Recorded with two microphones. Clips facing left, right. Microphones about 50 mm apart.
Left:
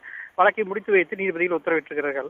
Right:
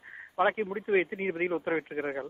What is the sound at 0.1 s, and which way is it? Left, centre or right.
Speech, left.